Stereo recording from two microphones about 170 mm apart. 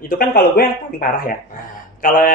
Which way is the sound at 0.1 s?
60° left (ahead or behind).